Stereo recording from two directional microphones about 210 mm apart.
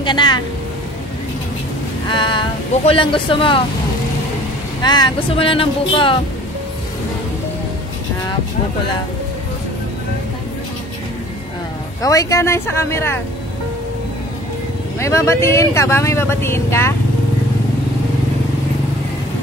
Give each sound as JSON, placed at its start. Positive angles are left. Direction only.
{"t": 0.0, "sound": "speech", "side_deg": 20}
{"t": 2.0, "sound": "a sound", "side_deg": 20}
{"t": 2.9, "sound": "speech", "side_deg": 25}
{"t": 4.8, "sound": "speech", "side_deg": 20}
{"t": 12.0, "sound": "speech", "side_deg": 15}
{"t": 15.0, "sound": "speech", "side_deg": 15}